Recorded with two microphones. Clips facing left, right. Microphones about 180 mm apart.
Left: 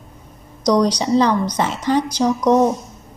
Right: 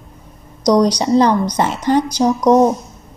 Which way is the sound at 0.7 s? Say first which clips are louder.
Right 3 dB; 40° right (ahead or behind).